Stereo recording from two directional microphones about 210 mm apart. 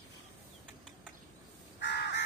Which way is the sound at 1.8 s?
55° left (ahead or behind).